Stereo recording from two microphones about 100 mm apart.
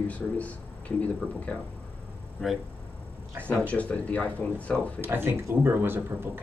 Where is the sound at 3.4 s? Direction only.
15° left (ahead or behind).